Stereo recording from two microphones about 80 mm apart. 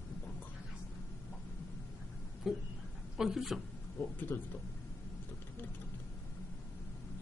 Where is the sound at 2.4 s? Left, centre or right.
Centre.